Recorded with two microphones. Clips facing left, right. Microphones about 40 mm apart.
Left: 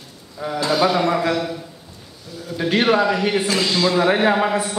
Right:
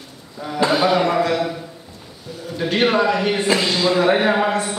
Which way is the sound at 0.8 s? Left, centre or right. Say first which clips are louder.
Left 1 dB; centre.